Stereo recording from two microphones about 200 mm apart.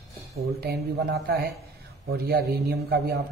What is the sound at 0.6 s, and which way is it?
A man's voice, 50° right (ahead or behind).